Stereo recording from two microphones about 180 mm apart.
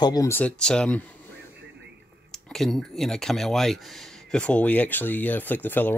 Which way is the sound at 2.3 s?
Centre (ahead or behind).